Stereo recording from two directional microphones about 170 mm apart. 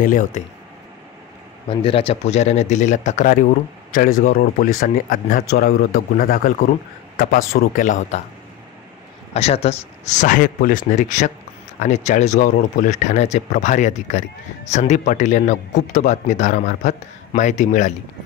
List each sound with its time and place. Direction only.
0.0 s speech: 50° left (ahead or behind)
1.7 s a man's voice: 30° left (ahead or behind); by 8.2 s 50° left (ahead or behind)
9.3 s speech: 40° left (ahead or behind)